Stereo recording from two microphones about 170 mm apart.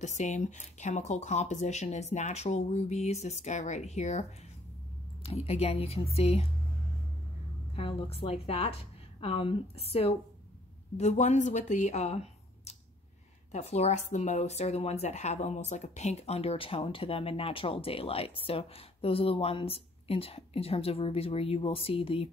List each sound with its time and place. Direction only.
0.0 s speech: 45° left (ahead or behind)
7.7 s speech: 35° left (ahead or behind)